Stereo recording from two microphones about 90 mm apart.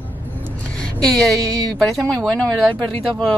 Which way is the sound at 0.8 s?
5° left (ahead or behind).